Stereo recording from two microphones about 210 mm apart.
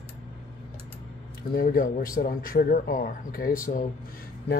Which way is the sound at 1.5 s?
45° left (ahead or behind).